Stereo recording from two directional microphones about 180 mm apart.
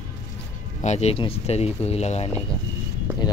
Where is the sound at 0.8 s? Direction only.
35° left (ahead or behind).